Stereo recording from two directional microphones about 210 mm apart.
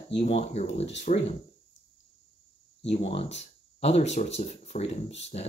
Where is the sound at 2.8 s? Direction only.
30° left (ahead or behind).